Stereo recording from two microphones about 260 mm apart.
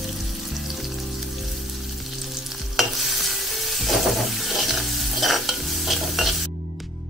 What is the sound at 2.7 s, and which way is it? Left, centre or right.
Stir, centre.